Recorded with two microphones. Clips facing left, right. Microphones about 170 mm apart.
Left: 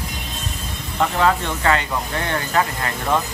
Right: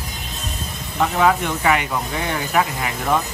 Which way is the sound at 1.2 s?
10° right (ahead or behind).